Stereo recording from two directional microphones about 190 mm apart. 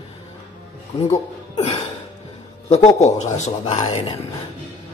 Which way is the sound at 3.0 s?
35° left (ahead or behind).